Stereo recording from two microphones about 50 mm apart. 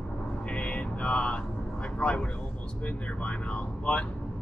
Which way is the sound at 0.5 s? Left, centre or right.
Left.